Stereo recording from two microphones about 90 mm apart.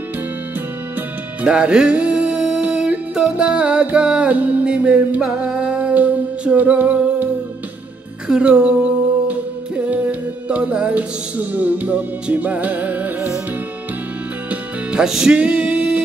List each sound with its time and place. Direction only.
1.4 s music: 10° right (ahead or behind)
8.3 s singing: 10° right (ahead or behind)
14.5 s music: 10° right (ahead or behind)